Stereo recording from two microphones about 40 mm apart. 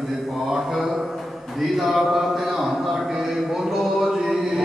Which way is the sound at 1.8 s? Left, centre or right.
Centre.